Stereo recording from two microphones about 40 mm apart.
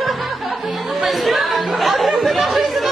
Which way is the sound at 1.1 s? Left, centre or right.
Centre.